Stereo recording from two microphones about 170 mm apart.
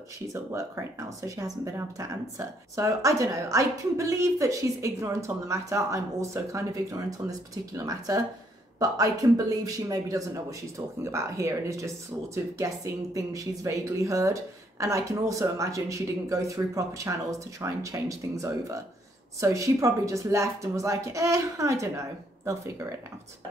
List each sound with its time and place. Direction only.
0.3 s a woman's voice: 15° right (ahead or behind)